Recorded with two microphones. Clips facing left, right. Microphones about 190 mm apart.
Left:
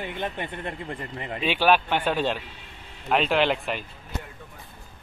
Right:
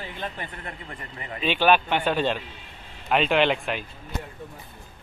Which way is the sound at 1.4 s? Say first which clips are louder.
Right 1 dB; 5° left (ahead or behind).